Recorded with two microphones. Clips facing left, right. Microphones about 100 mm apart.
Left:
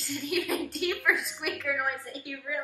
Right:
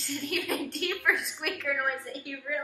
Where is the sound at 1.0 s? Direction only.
Centre (ahead or behind).